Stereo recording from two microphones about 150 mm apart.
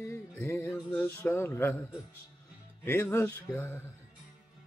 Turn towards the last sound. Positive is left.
turn(degrees=15)  # may be behind; listen again after turning